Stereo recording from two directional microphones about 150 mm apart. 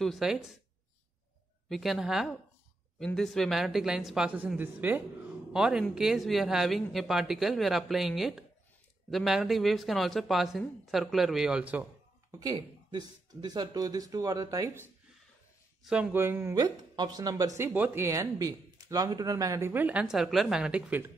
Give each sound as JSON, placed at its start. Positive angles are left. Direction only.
{"t": 0.0, "sound": "speech", "side_deg": 0}
{"t": 1.7, "sound": "speech", "side_deg": 0}
{"t": 12.4, "sound": "speech", "side_deg": -25}
{"t": 15.8, "sound": "speech", "side_deg": -5}
{"t": 16.5, "sound": "speech", "side_deg": -30}